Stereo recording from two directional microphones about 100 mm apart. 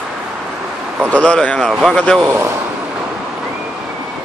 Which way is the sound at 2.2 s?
20° right (ahead or behind).